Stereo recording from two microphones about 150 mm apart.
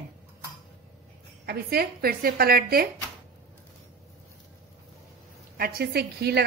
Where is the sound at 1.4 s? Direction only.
90° right.